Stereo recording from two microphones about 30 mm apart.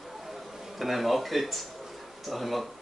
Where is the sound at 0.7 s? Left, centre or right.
Centre.